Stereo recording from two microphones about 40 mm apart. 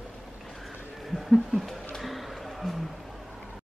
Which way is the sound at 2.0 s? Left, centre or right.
Centre.